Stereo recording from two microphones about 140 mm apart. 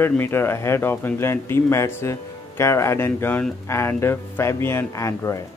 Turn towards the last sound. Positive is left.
turn(degrees=20)  # may be behind; listen again after turning